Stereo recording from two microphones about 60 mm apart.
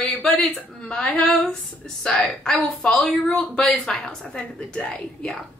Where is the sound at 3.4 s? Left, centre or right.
Centre.